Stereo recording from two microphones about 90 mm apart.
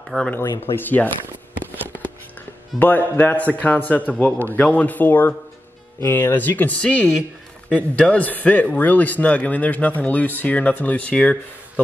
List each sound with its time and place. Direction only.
0.1 s speech: 5° left (ahead or behind)
0.7 s a man's voice: 20° left (ahead or behind)
2.8 s a man's voice: 20° left (ahead or behind)